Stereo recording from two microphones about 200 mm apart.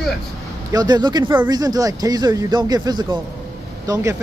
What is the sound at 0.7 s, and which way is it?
Speech, 20° right (ahead or behind).